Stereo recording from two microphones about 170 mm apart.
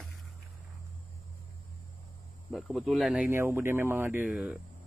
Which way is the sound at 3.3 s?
15° right (ahead or behind).